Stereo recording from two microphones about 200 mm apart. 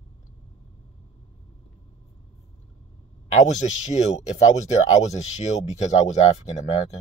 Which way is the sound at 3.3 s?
35° left (ahead or behind).